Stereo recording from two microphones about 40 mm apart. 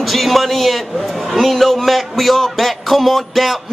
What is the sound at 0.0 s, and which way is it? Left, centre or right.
A man's voice, centre.